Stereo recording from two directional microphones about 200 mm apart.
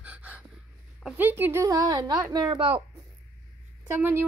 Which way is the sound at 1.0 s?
10° right (ahead or behind).